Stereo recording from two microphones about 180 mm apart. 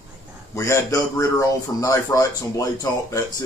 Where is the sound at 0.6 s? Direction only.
15° left (ahead or behind).